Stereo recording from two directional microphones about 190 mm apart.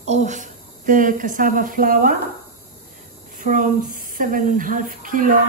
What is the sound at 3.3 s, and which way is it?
Speech, 45° right (ahead or behind).